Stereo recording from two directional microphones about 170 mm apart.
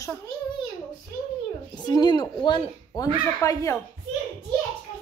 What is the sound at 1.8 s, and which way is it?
Speech, 25° left (ahead or behind).